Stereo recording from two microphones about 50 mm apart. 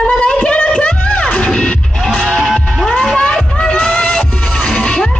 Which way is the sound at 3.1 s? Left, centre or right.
Centre.